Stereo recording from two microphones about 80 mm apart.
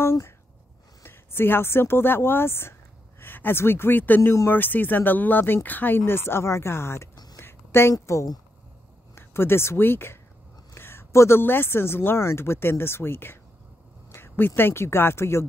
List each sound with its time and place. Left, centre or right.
1.0 s speech: left
4.2 s speech: left
7.3 s a sound: left
7.9 s speech: left